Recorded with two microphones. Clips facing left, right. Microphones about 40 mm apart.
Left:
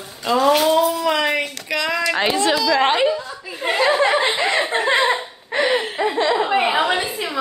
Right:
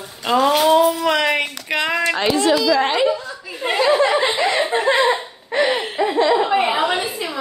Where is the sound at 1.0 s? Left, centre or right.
Right.